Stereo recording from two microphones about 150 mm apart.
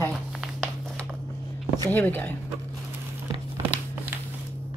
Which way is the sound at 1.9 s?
10° left (ahead or behind).